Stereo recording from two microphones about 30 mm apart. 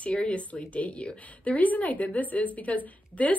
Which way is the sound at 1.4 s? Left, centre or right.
Left.